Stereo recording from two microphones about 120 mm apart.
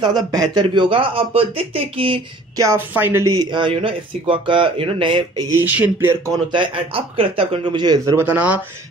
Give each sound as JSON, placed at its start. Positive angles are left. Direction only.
{"t": 0.0, "sound": "speech", "side_deg": -35}
{"t": 2.5, "sound": "speech", "side_deg": -25}
{"t": 3.3, "sound": "speech", "side_deg": -40}
{"t": 5.6, "sound": "speech", "side_deg": -15}
{"t": 6.5, "sound": "speech", "side_deg": -45}
{"t": 8.0, "sound": "speech", "side_deg": -25}
{"t": 8.3, "sound": "speech", "side_deg": -10}